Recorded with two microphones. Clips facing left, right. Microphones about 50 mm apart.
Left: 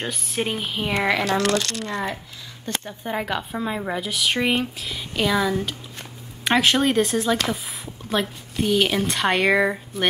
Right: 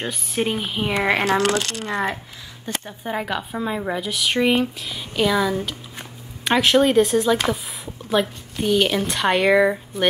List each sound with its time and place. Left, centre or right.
0.0 s speech: centre
1.8 s speech: right
2.6 s a woman's voice: centre